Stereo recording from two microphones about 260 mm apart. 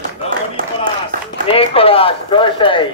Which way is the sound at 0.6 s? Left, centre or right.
Right.